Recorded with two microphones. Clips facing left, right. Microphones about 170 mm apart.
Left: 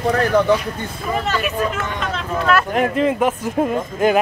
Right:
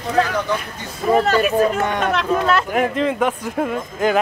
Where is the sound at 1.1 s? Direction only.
40° right (ahead or behind).